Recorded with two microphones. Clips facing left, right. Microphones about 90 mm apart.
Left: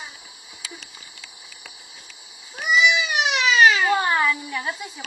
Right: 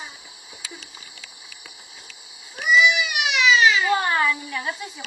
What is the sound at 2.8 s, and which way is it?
Baby cry, 35° left (ahead or behind).